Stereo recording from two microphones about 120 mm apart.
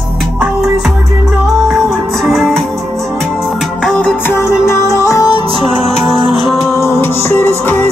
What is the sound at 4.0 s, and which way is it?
Music, 15° left (ahead or behind).